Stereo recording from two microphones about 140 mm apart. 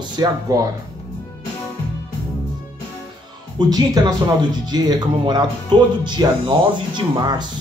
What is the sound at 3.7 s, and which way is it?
Speech, 30° right (ahead or behind).